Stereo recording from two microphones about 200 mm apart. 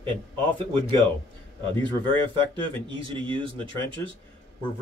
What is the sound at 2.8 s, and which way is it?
A man's voice, 25° right (ahead or behind).